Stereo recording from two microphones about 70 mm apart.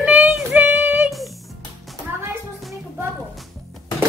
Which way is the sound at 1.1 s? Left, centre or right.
Centre.